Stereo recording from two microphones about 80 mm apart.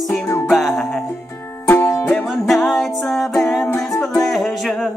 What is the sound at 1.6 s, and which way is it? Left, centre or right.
Music, left.